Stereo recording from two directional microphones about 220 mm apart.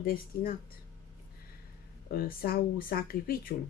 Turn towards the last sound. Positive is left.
turn(degrees=40)  # may be behind; listen again after turning